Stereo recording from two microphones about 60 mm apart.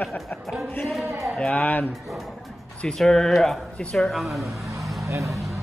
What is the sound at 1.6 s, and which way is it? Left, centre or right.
Speech, left.